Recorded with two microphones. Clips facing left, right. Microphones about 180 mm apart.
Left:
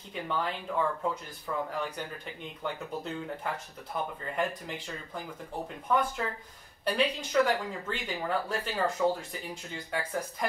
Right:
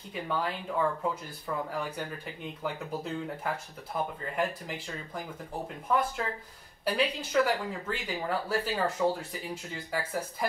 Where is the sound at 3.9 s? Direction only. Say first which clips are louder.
Right 1 dB; 5° right (ahead or behind).